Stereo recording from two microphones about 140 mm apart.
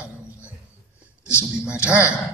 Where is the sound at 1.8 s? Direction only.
10° right (ahead or behind).